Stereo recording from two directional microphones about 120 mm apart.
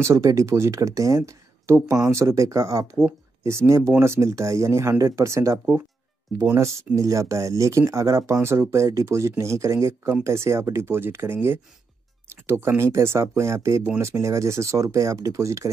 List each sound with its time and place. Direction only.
0.0 s speech: 25° right (ahead or behind)
12.4 s speech: 20° right (ahead or behind)